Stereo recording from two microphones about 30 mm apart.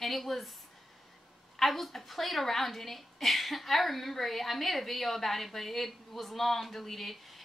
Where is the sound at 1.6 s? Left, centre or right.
Centre.